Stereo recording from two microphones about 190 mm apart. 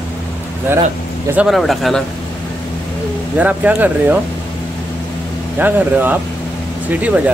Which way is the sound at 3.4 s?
10° right (ahead or behind).